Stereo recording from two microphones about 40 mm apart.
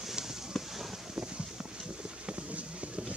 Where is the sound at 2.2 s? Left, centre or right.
Right.